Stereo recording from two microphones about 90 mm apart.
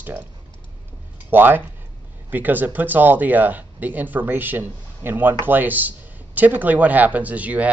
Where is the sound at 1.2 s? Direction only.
25° right (ahead or behind).